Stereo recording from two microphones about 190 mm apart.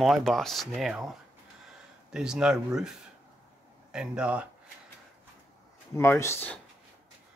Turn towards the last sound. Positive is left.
turn(degrees=10)  # may be behind; listen again after turning